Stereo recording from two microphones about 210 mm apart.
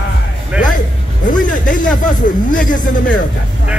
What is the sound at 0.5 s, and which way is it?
Speech, 5° right (ahead or behind).